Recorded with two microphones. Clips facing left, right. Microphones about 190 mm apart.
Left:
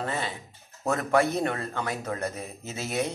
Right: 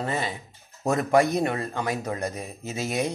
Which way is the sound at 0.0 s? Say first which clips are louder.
Right 3 dB; 15° right (ahead or behind).